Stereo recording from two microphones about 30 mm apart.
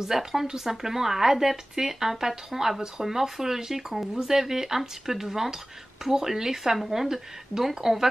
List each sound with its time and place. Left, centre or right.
0.0 s speech: centre